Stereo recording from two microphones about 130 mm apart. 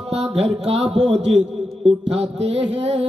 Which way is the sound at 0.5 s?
55° right (ahead or behind).